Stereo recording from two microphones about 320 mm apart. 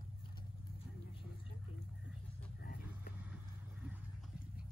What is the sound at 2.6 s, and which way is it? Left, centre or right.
Vehicle, left.